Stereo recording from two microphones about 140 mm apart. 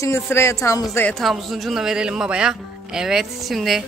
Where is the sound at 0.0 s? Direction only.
20° left (ahead or behind).